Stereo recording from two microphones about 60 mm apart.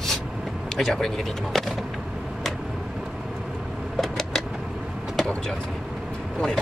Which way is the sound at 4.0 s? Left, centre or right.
Centre.